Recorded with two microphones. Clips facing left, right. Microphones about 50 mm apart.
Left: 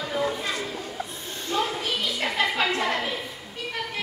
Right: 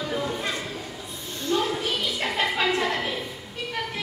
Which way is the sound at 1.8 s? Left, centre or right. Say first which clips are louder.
Right 1 dB; centre.